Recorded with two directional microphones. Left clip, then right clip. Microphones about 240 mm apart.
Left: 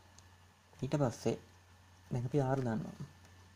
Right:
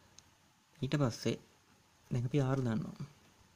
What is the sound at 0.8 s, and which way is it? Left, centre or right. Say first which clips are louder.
Speech: left 1 dB; right.